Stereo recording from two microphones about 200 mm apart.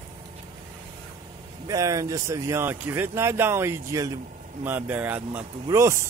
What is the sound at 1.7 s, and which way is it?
Speech, 15° right (ahead or behind).